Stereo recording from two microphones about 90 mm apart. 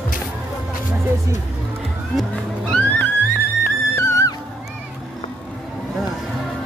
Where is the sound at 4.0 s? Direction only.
35° left (ahead or behind).